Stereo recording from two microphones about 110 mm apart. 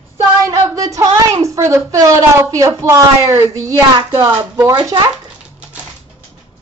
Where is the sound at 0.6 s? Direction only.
30° right (ahead or behind).